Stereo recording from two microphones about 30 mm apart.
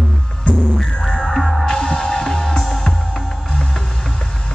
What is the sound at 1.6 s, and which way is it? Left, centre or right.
Music, centre.